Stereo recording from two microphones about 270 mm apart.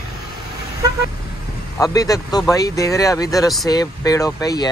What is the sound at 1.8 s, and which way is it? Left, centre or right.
Speech, centre.